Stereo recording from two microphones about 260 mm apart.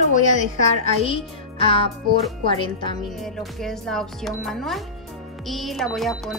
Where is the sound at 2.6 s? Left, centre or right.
Centre.